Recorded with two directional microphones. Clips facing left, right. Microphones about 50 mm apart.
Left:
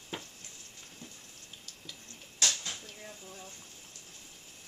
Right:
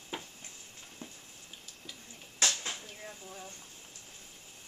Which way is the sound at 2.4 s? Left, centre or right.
Centre.